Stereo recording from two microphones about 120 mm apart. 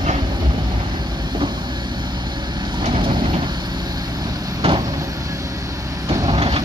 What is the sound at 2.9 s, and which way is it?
Vehicle, 40° right (ahead or behind).